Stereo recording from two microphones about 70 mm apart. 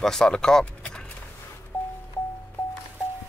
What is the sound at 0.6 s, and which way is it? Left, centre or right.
Vehicle, centre.